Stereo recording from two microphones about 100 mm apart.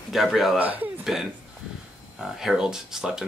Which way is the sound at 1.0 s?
5° right (ahead or behind).